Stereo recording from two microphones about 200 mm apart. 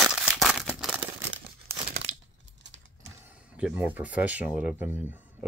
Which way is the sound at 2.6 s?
65° right (ahead or behind).